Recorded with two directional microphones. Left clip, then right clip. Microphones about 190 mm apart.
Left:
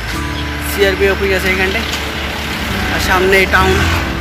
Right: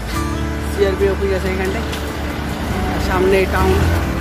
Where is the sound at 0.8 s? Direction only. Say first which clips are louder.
Left 4 dB; 10° left (ahead or behind).